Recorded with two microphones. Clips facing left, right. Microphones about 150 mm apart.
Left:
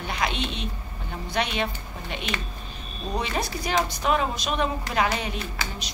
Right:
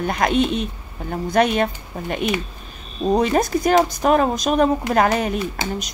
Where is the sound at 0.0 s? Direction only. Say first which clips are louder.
Right 10 dB; 50° right (ahead or behind).